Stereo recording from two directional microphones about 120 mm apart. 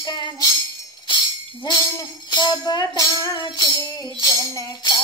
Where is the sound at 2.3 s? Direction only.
35° left (ahead or behind).